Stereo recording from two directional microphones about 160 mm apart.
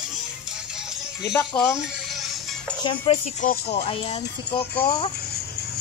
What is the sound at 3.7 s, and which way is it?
Speech, 35° left (ahead or behind).